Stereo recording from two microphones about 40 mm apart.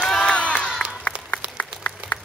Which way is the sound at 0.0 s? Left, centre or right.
Centre.